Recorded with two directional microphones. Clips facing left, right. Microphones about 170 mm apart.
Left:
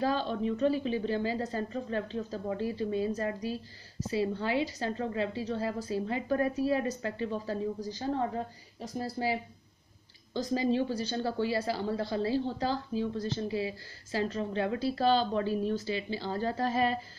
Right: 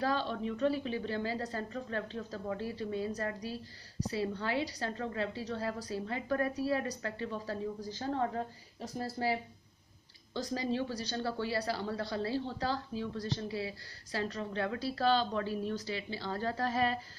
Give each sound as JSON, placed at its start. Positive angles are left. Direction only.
{"t": 0.0, "sound": "a woman's voice", "side_deg": 20}